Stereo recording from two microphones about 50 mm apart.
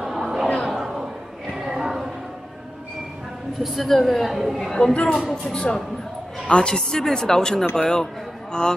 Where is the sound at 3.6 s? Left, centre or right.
Centre.